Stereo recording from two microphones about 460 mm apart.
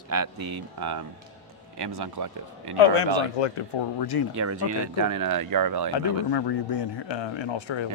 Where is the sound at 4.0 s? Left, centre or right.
Left.